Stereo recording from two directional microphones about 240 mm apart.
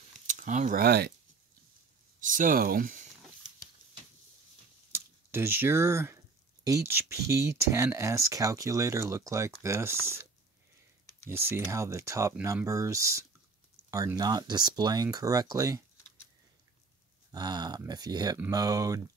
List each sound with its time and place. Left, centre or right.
0.3 s speech: right
2.1 s speech: right
4.9 s speech: centre
11.2 s speech: centre
17.3 s speech: centre